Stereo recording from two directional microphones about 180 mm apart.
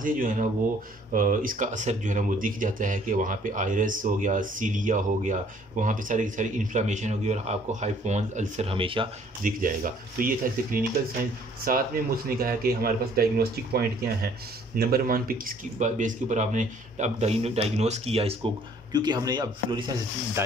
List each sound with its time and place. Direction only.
0.0 s speech: 50° right (ahead or behind); by 9.1 s 30° right (ahead or behind)
9.4 s speech: 50° right (ahead or behind); by 20.4 s 20° right (ahead or behind)